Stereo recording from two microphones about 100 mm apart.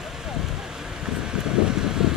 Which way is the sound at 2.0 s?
5° right (ahead or behind).